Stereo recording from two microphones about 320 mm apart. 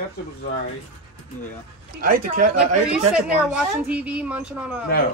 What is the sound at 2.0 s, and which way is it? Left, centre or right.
Speech, right.